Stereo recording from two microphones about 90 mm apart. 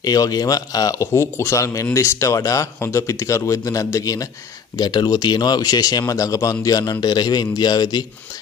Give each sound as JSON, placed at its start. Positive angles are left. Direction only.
{"t": 0.0, "sound": "speech", "side_deg": 45}